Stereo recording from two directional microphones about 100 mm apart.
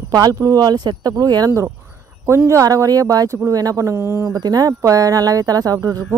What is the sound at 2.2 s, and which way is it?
Speech, 30° right (ahead or behind).